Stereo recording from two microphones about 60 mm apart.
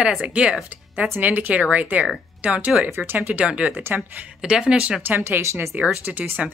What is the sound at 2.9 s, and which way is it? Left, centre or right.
Speech, right.